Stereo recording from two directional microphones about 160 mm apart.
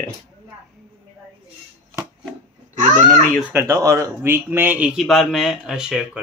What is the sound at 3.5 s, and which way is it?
Speech, 15° right (ahead or behind).